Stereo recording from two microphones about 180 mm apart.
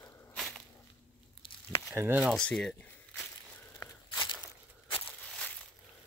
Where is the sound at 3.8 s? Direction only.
25° left (ahead or behind).